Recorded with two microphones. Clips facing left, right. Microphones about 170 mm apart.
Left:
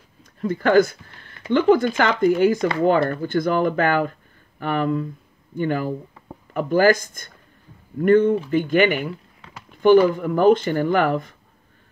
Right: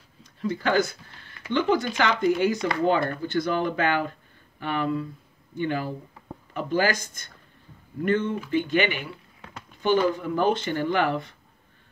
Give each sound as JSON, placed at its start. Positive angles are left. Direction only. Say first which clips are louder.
{"t": 0.2, "sound": "speech", "louder": "left 5 dB", "side_deg": 50}
{"t": 10.1, "sound": "speech", "louder": "left 8 dB", "side_deg": 50}